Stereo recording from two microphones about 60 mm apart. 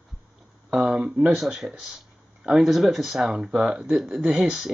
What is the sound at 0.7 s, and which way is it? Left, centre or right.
Speech, centre.